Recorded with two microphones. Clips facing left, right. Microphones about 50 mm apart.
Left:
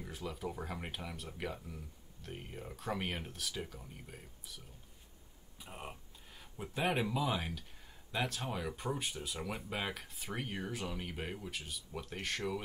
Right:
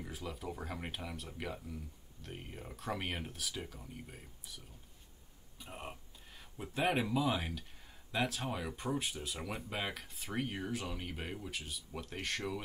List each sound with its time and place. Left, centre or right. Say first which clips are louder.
0.0 s speech: left 1 dB; centre
5.6 s a sound: right 1 dB; centre
6.6 s speech: right 1 dB; centre